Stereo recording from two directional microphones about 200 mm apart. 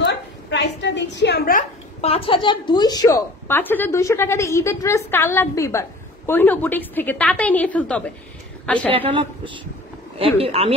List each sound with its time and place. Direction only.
0.0 s a woman's voice: 60° left (ahead or behind); by 8.9 s 5° left (ahead or behind)
8.9 s a woman's voice: 25° right (ahead or behind)